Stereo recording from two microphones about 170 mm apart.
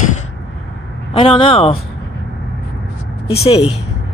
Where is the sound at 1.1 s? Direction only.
30° left (ahead or behind).